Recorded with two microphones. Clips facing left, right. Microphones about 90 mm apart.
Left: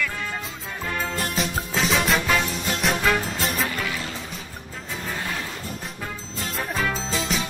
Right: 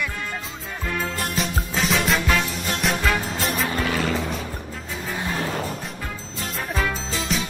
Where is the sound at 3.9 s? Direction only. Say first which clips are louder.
Right 7 dB; 65° right (ahead or behind).